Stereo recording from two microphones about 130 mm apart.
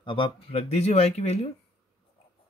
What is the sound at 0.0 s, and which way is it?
Speech, 40° left (ahead or behind).